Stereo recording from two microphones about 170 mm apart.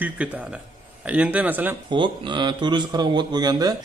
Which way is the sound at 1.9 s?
25° right (ahead or behind).